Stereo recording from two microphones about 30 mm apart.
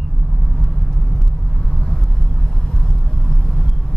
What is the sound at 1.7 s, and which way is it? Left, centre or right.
Vehicle, left.